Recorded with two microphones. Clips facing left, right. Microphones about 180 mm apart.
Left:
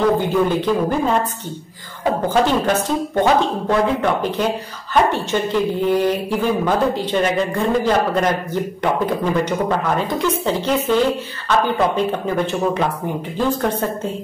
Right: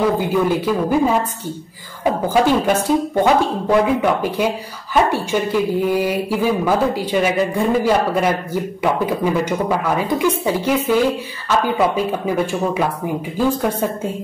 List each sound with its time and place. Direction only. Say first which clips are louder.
0.0 s a woman's voice: left 1 dB; 10° right (ahead or behind)
2.2 s a woman's voice: right 2 dB; 10° right (ahead or behind)